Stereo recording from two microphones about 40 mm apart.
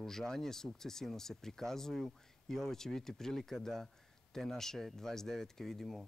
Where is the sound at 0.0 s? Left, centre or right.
Centre.